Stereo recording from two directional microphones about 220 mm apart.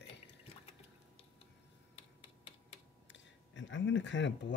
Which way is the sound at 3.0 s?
55° left (ahead or behind).